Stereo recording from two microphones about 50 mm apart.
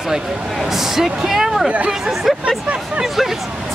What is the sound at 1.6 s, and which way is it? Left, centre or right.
Speech, right.